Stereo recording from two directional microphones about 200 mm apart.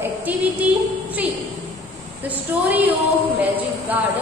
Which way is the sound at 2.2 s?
10° right (ahead or behind).